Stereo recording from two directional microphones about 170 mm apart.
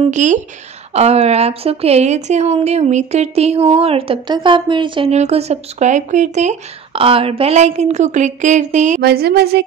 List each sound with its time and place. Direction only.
0.1 s a woman's voice: 45° right (ahead or behind)
9.0 s speech: 65° right (ahead or behind)